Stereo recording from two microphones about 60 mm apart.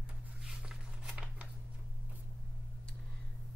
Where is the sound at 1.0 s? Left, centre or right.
Centre.